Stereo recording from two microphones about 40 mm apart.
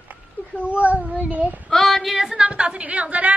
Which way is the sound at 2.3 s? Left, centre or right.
Right.